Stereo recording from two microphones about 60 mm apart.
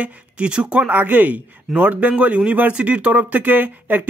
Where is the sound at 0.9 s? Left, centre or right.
Right.